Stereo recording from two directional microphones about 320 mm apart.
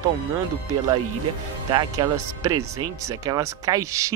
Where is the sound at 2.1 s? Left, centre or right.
Right.